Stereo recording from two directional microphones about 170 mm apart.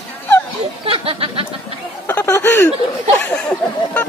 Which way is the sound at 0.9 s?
30° right (ahead or behind).